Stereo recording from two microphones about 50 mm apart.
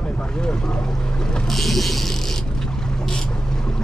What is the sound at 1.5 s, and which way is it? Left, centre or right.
Speech, centre.